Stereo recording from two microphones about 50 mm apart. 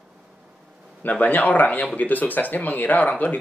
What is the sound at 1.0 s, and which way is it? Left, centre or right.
Speech, left.